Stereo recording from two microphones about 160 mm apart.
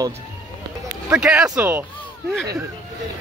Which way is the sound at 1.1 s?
5° right (ahead or behind).